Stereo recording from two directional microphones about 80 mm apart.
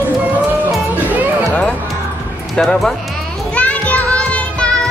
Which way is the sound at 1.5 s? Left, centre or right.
Centre.